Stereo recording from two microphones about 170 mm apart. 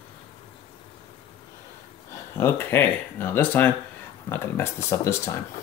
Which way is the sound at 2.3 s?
15° left (ahead or behind).